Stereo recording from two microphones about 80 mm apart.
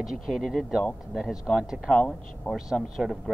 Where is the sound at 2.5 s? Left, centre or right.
Centre.